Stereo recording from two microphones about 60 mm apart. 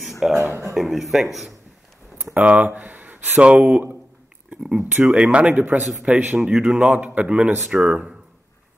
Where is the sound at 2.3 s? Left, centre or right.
Right.